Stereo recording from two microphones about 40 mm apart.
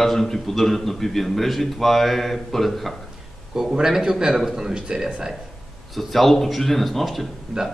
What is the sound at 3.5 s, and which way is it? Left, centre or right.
A man's voice, centre.